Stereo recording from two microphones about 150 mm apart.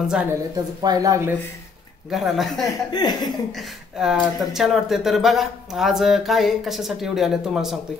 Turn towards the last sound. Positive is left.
turn(degrees=0)  # may be behind; listen again after turning